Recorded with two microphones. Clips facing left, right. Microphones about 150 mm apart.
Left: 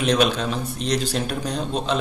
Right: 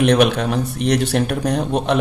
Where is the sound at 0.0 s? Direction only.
65° right (ahead or behind).